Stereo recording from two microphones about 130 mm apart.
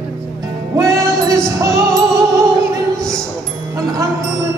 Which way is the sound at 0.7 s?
25° right (ahead or behind).